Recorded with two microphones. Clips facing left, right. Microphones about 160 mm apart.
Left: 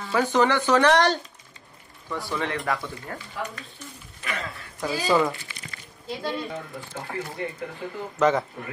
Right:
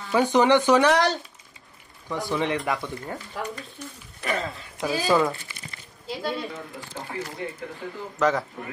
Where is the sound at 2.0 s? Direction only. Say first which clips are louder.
Right 3 dB; 15° right (ahead or behind).